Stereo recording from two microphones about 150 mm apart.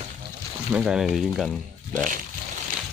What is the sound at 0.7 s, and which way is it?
Speech, 5° right (ahead or behind).